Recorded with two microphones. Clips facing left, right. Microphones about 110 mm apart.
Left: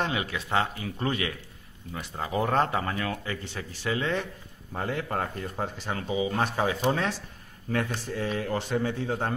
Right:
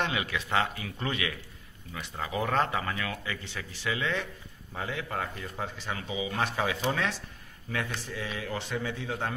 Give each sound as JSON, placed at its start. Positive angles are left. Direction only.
{"t": 0.0, "sound": "speech", "side_deg": 35}